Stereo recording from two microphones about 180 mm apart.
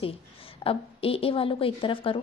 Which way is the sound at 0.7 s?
30° left (ahead or behind).